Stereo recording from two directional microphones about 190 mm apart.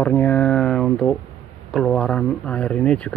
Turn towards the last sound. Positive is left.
turn(degrees=5)  # may be behind; listen again after turning